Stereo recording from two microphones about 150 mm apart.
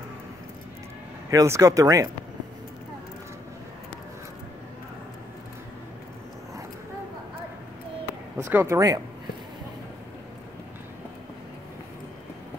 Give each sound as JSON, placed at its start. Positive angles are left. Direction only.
{"t": 1.3, "sound": "speech", "side_deg": -25}
{"t": 8.4, "sound": "speech", "side_deg": -15}